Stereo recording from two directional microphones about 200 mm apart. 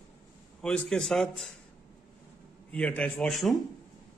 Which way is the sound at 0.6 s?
5° left (ahead or behind).